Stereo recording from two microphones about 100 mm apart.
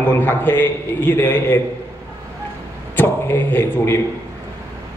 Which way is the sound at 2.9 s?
20° left (ahead or behind).